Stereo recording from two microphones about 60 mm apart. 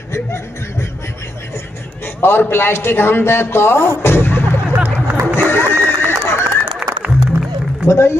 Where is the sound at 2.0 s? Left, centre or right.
Left.